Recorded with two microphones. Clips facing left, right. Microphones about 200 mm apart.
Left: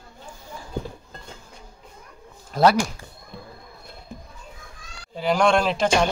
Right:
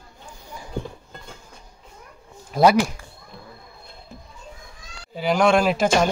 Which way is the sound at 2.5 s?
10° right (ahead or behind).